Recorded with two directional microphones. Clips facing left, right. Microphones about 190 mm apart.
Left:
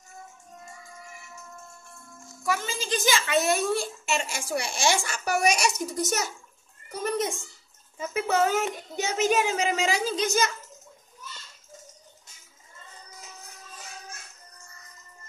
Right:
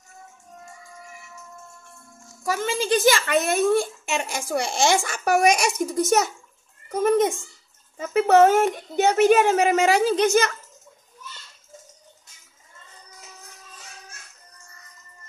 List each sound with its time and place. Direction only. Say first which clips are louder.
2.6 s a woman's voice: right 9 dB; 60° right (ahead or behind)
8.1 s a woman's voice: right 9 dB; 65° right (ahead or behind)